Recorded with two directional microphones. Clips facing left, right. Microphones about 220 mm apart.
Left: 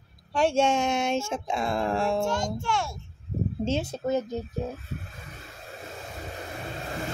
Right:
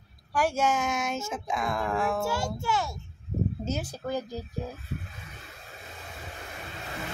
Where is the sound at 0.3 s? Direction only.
25° left (ahead or behind).